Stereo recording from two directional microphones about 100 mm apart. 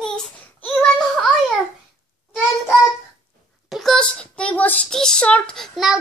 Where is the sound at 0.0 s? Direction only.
10° left (ahead or behind).